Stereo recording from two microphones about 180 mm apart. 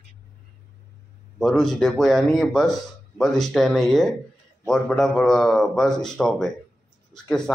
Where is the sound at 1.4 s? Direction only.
5° left (ahead or behind).